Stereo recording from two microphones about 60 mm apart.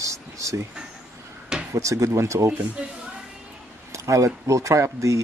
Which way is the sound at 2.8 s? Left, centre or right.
Centre.